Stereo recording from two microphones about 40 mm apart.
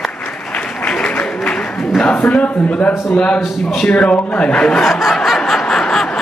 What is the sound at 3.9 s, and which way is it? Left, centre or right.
Speech, left.